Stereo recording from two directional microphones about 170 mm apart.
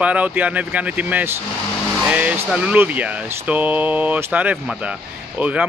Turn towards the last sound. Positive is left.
turn(degrees=-10)  # may be behind; listen again after turning